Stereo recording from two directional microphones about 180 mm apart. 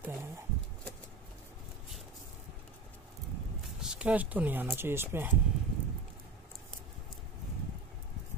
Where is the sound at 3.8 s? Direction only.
5° right (ahead or behind).